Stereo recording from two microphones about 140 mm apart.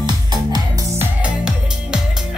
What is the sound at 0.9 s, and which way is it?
Music, 5° right (ahead or behind).